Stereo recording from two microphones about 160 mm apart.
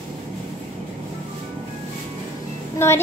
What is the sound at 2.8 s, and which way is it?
Child singing, 15° left (ahead or behind).